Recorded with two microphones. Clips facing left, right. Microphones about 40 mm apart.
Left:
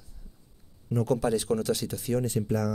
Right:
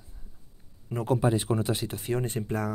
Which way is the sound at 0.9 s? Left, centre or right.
Right.